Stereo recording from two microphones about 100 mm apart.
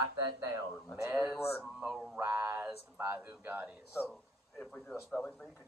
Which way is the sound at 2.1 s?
25° right (ahead or behind).